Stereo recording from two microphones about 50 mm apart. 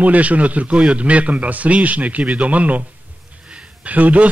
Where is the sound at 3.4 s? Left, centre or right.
Right.